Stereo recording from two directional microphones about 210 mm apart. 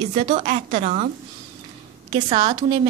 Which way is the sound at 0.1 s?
30° right (ahead or behind).